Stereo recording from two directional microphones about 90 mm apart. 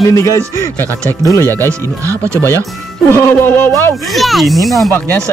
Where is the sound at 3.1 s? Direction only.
30° left (ahead or behind).